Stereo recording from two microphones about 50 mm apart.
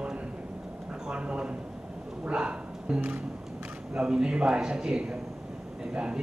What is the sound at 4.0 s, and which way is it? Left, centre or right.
A man's voice, centre.